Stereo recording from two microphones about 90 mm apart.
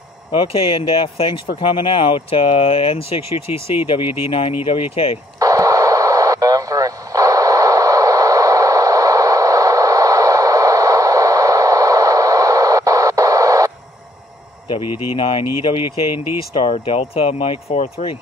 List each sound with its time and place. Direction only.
0.3 s speech: 85° left
5.4 s radio: 40° right (ahead or behind)
14.7 s speech: 90° left